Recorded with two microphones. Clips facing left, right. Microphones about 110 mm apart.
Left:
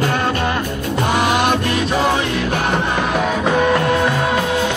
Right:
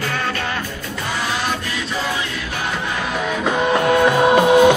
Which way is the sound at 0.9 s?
60° left (ahead or behind).